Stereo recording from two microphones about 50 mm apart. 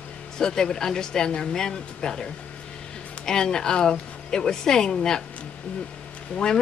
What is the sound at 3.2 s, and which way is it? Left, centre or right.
Speech, centre.